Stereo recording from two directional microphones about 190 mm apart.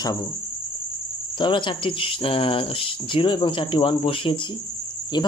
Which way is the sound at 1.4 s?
25° left (ahead or behind).